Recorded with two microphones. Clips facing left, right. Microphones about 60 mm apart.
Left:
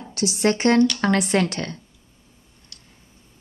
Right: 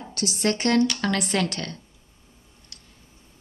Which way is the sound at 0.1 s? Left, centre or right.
Left.